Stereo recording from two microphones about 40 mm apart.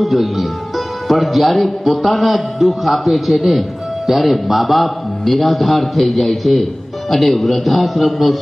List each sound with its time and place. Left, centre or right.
0.0 s a man's voice: centre